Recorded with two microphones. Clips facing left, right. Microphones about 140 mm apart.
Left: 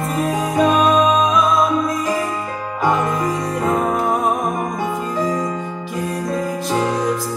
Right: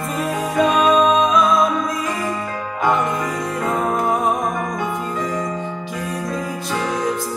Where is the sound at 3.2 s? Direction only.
35° left (ahead or behind).